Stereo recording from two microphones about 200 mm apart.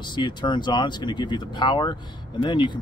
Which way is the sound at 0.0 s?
20° left (ahead or behind).